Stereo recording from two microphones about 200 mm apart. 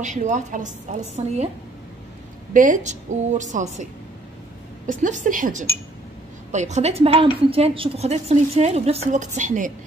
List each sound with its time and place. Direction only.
0.0 s a woman's voice: 40° right (ahead or behind)
2.5 s a woman's voice: 40° right (ahead or behind)
4.8 s a woman's voice: 40° right (ahead or behind)